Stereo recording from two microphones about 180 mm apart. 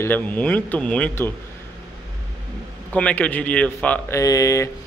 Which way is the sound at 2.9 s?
10° left (ahead or behind).